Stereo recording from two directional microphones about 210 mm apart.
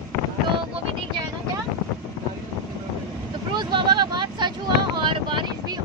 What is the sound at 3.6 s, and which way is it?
Speech, 20° right (ahead or behind).